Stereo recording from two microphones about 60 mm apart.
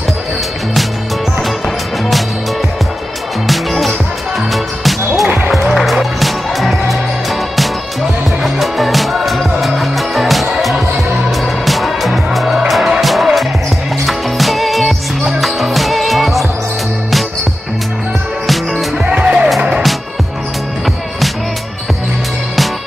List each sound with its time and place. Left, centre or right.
3.4 s music: centre
19.0 s music: centre